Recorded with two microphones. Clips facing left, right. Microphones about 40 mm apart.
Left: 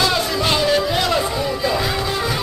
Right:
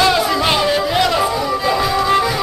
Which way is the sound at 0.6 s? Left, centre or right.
Centre.